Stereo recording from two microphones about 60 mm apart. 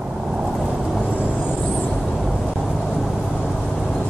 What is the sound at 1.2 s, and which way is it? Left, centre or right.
Vehicle, centre.